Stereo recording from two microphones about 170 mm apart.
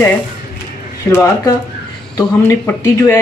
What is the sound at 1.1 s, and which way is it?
Speech, 15° left (ahead or behind).